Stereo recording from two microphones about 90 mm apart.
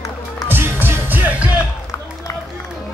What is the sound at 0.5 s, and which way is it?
Music, 25° right (ahead or behind).